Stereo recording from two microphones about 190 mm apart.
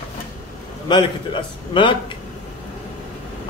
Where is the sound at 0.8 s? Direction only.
25° left (ahead or behind).